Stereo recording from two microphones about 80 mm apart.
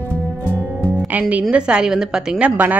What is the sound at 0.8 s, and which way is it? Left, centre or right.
Music, right.